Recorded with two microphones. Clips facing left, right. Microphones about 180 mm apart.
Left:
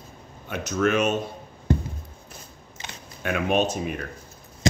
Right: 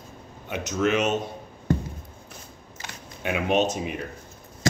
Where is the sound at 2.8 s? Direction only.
20° left (ahead or behind).